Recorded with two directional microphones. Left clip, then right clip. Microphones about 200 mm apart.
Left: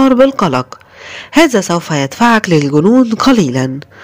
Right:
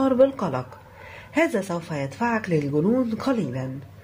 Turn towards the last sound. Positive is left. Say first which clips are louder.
# left 15 dB
turn(degrees=50)  # may be behind; listen again after turning